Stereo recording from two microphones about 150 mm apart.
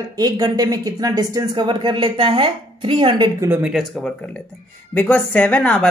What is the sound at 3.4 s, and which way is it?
Speech, 15° right (ahead or behind).